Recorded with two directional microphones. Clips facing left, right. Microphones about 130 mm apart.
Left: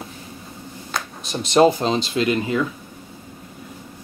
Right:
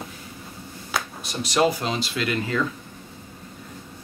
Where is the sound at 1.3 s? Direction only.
25° left (ahead or behind).